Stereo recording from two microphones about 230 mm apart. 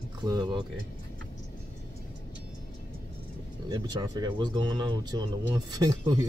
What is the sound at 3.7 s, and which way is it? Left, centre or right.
Speech, centre.